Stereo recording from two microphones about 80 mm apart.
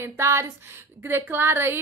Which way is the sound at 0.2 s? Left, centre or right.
Right.